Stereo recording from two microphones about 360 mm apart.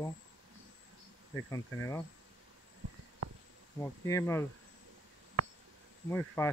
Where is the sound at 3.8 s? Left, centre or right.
Centre.